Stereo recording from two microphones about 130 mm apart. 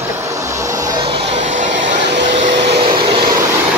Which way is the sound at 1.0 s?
45° right (ahead or behind).